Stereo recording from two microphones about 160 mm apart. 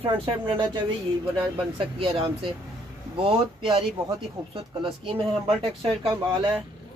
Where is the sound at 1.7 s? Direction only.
35° right (ahead or behind).